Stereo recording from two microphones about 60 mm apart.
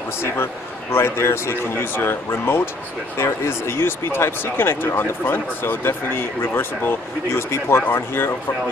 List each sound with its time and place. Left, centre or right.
0.9 s speech: left